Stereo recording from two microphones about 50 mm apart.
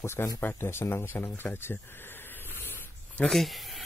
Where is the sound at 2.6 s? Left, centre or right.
Left.